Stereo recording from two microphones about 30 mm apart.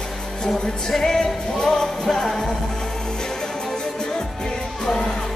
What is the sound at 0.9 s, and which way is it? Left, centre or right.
Music, centre.